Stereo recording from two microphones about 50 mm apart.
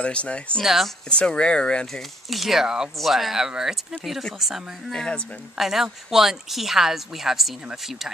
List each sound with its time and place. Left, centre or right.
0.0 s speech: left
0.6 s speech: centre
1.1 s speech: centre
2.2 s speech: centre
4.9 s speech: centre
5.6 s speech: centre